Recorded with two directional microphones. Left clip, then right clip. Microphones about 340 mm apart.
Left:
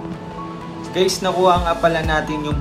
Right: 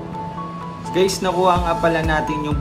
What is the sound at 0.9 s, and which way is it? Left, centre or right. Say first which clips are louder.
Speech: even; centre.